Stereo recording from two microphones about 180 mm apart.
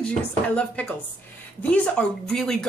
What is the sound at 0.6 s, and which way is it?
Speech, 10° left (ahead or behind).